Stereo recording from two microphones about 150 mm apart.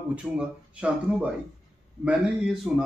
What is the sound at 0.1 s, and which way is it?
A man's voice, 5° right (ahead or behind).